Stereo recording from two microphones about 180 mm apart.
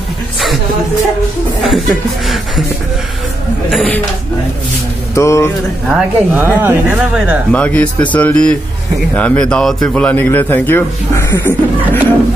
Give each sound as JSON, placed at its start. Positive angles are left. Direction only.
{"t": 1.7, "sound": "speech", "side_deg": 0}
{"t": 3.7, "sound": "speech", "side_deg": 5}
{"t": 5.1, "sound": "a man's voice", "side_deg": 15}
{"t": 5.9, "sound": "speech", "side_deg": -10}
{"t": 7.5, "sound": "a man's voice", "side_deg": 5}